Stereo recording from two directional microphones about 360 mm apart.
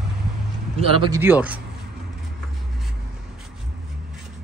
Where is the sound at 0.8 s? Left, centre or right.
Centre.